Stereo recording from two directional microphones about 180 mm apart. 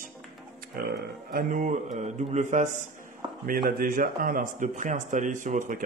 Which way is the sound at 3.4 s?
50° right (ahead or behind).